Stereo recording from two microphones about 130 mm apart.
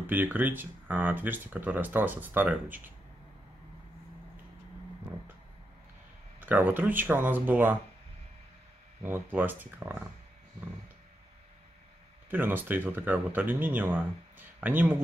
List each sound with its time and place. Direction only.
0.0 s speech: 15° right (ahead or behind)
6.4 s speech: 15° right (ahead or behind)
9.0 s speech: 15° right (ahead or behind)
12.3 s speech: 15° right (ahead or behind)